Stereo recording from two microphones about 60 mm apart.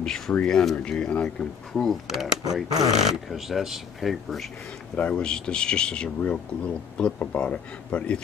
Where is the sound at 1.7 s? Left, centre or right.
Centre.